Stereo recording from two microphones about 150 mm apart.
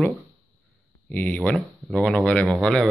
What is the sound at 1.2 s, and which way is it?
Speech, 5° left (ahead or behind).